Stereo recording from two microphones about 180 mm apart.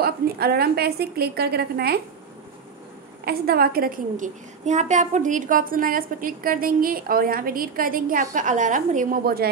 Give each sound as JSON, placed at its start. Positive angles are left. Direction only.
{"t": 0.0, "sound": "a woman's voice", "side_deg": -60}
{"t": 3.3, "sound": "a woman's voice", "side_deg": -60}